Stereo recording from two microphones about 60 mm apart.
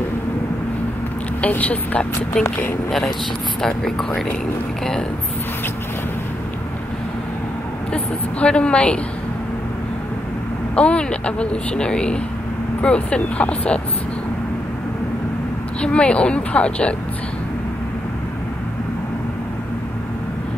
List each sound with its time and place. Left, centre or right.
1.4 s speech: left
7.9 s a woman's voice: centre
10.8 s a woman's voice: centre
15.8 s a woman's voice: centre